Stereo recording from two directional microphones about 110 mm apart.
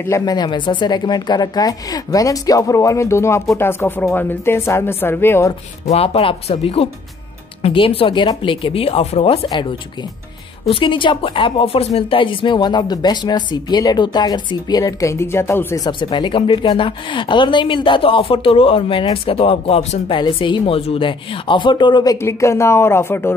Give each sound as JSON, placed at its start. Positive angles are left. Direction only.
{"t": 0.2, "sound": "speech", "side_deg": 40}
{"t": 5.9, "sound": "speech", "side_deg": 65}
{"t": 9.5, "sound": "a woman's voice", "side_deg": 45}
{"t": 12.2, "sound": "speech", "side_deg": 50}
{"t": 15.9, "sound": "a woman's voice", "side_deg": 50}
{"t": 20.2, "sound": "a woman's voice", "side_deg": 50}
{"t": 22.2, "sound": "speech", "side_deg": 25}